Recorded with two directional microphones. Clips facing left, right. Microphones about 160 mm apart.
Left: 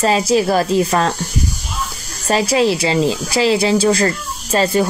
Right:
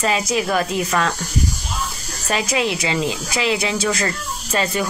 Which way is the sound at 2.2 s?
35° left (ahead or behind).